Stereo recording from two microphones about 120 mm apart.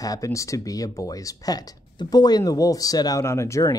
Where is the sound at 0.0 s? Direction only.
30° left (ahead or behind).